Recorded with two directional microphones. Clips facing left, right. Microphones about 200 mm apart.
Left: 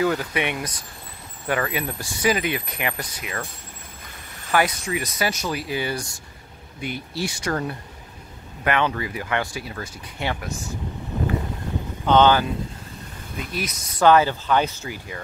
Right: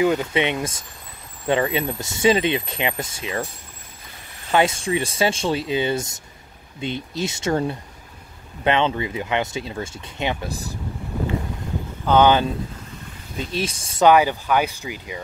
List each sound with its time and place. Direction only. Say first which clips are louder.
0.0 s speech: right 3 dB; 20° right (ahead or behind)
4.5 s speech: right 3 dB; 25° right (ahead or behind)
10.5 s speech: right 1 dB; 35° right (ahead or behind)
12.1 s speech: right 1 dB; 10° right (ahead or behind)
13.4 s speech: right 4 dB; 30° right (ahead or behind)
14.0 s speech: right 1 dB; 15° right (ahead or behind)